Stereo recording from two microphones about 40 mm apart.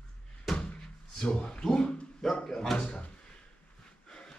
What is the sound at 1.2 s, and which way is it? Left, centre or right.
Speech, centre.